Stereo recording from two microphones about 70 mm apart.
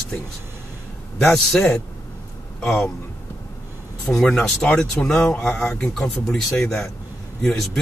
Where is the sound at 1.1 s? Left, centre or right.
Centre.